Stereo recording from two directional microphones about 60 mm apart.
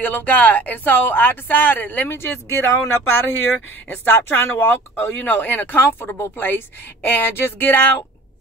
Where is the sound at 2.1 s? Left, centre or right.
Left.